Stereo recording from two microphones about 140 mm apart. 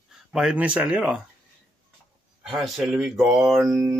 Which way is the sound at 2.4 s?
Centre (ahead or behind).